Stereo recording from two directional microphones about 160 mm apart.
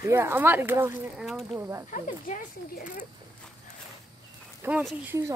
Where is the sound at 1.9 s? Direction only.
55° left (ahead or behind).